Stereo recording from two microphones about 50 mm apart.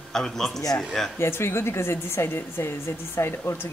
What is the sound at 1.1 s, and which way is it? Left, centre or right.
A woman's voice, left.